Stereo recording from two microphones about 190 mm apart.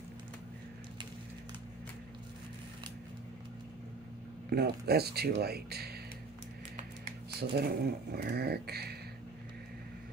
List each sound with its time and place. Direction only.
4.5 s speech: 55° right (ahead or behind)
7.2 s speech: 55° right (ahead or behind)